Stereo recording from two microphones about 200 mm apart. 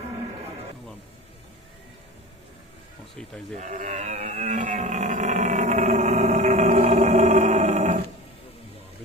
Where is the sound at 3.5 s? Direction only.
40° right (ahead or behind).